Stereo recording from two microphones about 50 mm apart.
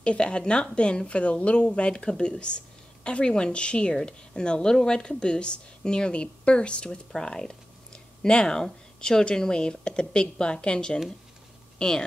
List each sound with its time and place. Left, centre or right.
0.0 s a woman's voice: left